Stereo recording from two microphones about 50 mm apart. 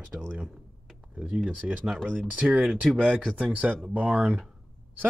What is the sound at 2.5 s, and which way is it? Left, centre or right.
Speech, centre.